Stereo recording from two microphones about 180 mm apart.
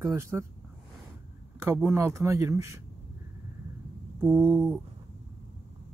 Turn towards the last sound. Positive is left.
turn(degrees=-10)  # may be behind; listen again after turning